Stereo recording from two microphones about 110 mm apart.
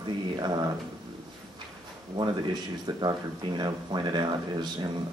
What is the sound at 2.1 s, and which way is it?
Speech, 40° right (ahead or behind).